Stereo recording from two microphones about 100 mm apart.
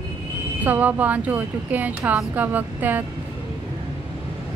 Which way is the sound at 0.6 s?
15° right (ahead or behind).